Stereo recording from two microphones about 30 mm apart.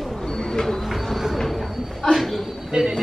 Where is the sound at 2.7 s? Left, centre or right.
Right.